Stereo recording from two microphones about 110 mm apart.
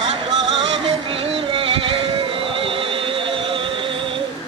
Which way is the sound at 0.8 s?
60° right (ahead or behind).